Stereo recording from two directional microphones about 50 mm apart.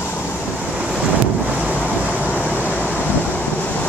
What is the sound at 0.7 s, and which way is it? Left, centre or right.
Waves, centre.